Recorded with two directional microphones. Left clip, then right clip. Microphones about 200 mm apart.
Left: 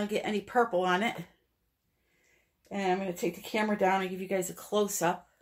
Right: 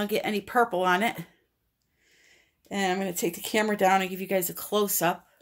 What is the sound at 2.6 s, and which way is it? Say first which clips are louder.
Speech: right 3 dB; 60° right (ahead or behind).